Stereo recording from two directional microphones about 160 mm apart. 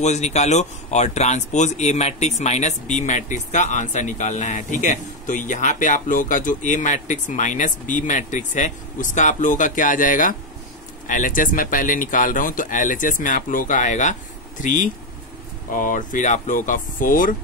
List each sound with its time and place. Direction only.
0.0 s speech: 45° left (ahead or behind)